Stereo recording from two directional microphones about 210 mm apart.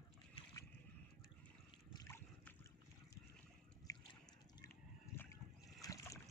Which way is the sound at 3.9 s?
15° left (ahead or behind).